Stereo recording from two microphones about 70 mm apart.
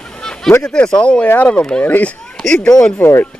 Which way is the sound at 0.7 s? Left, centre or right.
Centre.